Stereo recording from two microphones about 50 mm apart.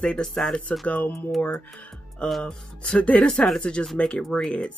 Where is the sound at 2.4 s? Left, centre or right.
Centre.